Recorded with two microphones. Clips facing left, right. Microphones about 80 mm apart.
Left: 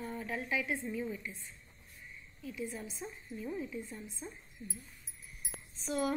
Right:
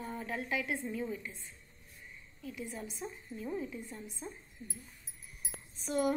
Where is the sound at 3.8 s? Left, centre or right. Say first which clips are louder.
Left 1 dB; right.